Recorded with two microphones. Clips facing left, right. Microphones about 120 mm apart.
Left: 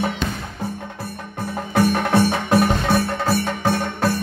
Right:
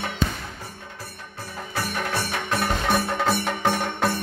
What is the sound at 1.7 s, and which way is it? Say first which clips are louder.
Music: left 10 dB; 55° left (ahead or behind).